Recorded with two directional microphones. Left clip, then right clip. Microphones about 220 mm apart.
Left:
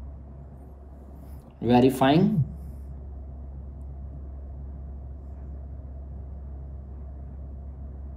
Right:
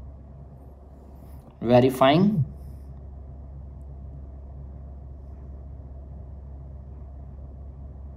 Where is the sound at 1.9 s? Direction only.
45° right (ahead or behind).